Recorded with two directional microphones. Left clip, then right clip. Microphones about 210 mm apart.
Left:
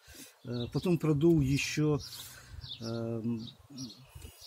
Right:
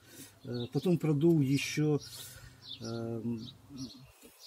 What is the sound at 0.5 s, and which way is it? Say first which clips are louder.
Speech: even; 25° left (ahead or behind).